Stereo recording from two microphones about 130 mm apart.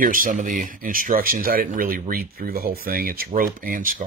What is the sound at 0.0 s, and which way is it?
Speech, 90° right.